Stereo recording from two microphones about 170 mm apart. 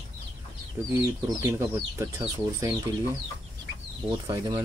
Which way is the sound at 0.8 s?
10° right (ahead or behind).